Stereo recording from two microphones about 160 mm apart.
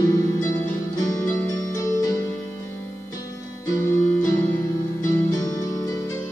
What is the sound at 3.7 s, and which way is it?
Music, 15° left (ahead or behind).